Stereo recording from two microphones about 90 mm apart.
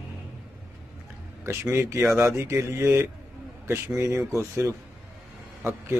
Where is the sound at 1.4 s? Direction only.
30° right (ahead or behind).